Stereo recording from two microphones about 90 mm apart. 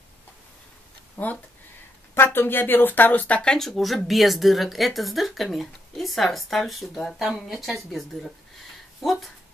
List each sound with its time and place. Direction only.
1.1 s speech: 20° left (ahead or behind)
3.5 s a woman's voice: centre (ahead or behind)